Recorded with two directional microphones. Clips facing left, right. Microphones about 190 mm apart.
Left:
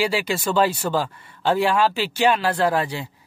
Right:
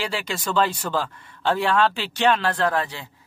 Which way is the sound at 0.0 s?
10° left (ahead or behind).